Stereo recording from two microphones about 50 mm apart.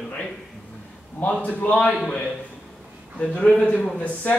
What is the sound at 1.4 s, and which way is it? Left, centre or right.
Speech, left.